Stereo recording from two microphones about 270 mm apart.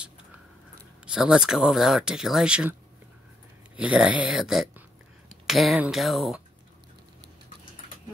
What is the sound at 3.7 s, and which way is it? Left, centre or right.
Speech, centre.